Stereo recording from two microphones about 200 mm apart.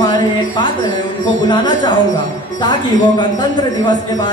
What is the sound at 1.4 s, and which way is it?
Speech, 20° left (ahead or behind).